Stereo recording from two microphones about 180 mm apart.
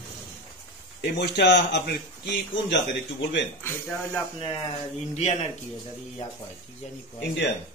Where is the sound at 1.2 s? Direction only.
65° left (ahead or behind).